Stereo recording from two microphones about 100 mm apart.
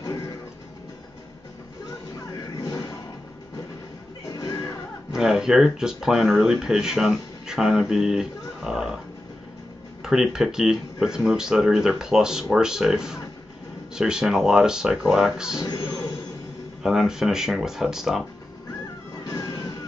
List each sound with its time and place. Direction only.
0.0 s music: 35° left (ahead or behind)
2.5 s a sound: 35° left (ahead or behind)
4.3 s music: 40° left (ahead or behind)
5.1 s speech: 5° right (ahead or behind)
10.0 s speech: 5° right (ahead or behind)
15.6 s music: 35° left (ahead or behind)
16.8 s speech: 5° right (ahead or behind)
19.2 s vehicle: 35° left (ahead or behind)